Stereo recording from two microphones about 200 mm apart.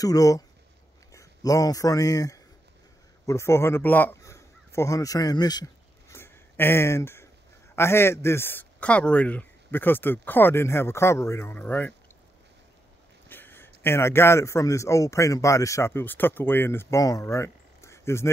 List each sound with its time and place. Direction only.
0.0 s speech: 15° left (ahead or behind)
13.3 s a sound: 10° left (ahead or behind)
13.8 s speech: 10° left (ahead or behind)